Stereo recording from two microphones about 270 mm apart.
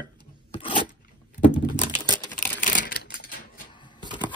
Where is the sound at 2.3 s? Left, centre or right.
Left.